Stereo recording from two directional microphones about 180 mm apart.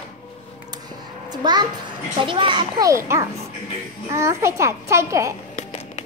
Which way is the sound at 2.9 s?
15° right (ahead or behind).